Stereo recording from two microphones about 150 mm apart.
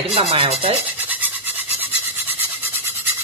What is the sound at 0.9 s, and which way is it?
Filing, 10° right (ahead or behind).